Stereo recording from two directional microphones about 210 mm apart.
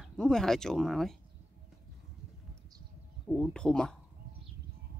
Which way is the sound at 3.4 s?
5° left (ahead or behind).